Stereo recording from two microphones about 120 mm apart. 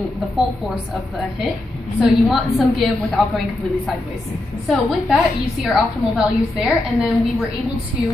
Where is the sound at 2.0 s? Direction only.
Centre (ahead or behind).